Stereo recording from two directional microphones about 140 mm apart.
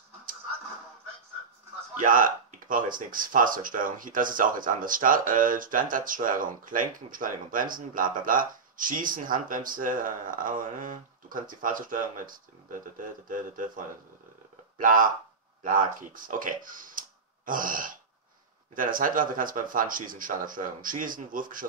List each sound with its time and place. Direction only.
2.0 s speech: 75° right (ahead or behind)
14.8 s speech: 75° right (ahead or behind)